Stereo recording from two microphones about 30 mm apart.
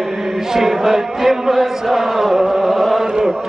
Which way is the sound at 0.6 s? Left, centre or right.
Centre.